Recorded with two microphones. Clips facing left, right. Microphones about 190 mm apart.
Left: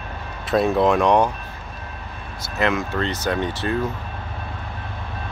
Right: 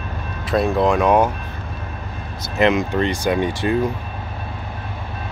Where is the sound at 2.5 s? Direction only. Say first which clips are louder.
Right 5 dB; 15° right (ahead or behind).